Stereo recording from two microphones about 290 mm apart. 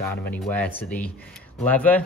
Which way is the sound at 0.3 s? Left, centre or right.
Centre.